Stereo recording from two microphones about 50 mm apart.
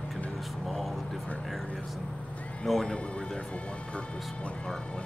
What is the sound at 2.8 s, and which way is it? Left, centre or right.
Speech, left.